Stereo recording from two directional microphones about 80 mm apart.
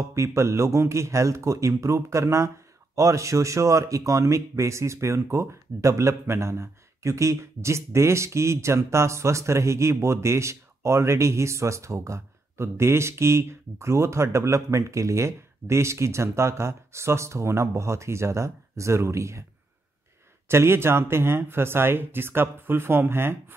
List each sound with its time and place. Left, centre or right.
0.1 s speech: right
20.4 s speech: right